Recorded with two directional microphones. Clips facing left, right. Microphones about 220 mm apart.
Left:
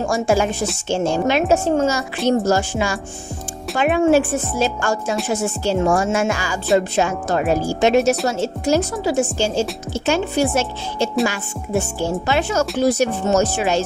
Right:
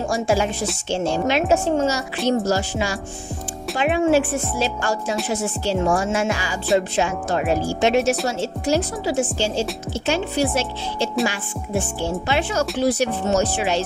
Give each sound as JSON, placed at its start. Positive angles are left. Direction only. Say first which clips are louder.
{"t": 0.0, "sound": "speech", "louder": "left 3 dB", "side_deg": 45}